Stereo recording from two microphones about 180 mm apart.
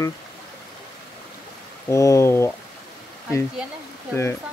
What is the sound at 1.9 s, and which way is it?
Speech, 15° left (ahead or behind).